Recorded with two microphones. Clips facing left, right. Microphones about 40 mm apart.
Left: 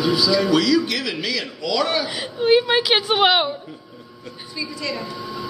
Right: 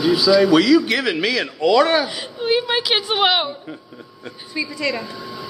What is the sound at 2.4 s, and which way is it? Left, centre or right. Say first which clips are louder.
A woman's voice: left 3 dB; centre.